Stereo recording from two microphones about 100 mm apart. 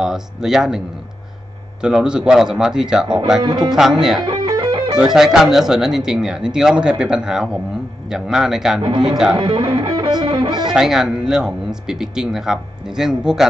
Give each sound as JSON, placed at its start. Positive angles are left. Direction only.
{"t": 0.0, "sound": "speech", "side_deg": -5}
{"t": 3.4, "sound": "speech", "side_deg": -50}
{"t": 3.7, "sound": "speech", "side_deg": -5}
{"t": 4.2, "sound": "music", "side_deg": -50}
{"t": 4.9, "sound": "speech", "side_deg": -5}
{"t": 9.4, "sound": "speech", "side_deg": -60}
{"t": 9.7, "sound": "music", "side_deg": -50}
{"t": 10.2, "sound": "speech", "side_deg": -55}
{"t": 10.7, "sound": "speech", "side_deg": -5}